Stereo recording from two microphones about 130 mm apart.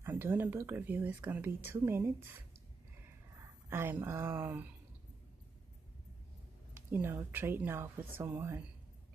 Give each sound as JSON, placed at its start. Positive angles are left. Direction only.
{"t": 0.0, "sound": "speech", "side_deg": -15}
{"t": 3.7, "sound": "speech", "side_deg": -15}
{"t": 6.7, "sound": "speech", "side_deg": -15}